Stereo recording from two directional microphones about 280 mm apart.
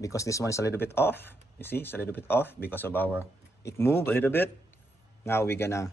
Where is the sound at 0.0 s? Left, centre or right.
Centre.